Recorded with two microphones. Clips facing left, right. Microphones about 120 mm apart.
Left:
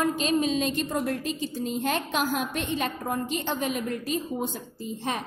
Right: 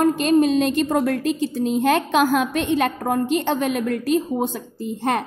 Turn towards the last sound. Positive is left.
turn(degrees=-60)  # may be behind; listen again after turning